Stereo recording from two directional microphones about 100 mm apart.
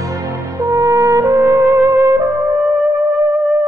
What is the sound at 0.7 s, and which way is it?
Brass instrument, 35° right (ahead or behind).